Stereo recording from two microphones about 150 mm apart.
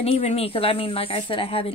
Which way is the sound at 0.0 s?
45° left (ahead or behind).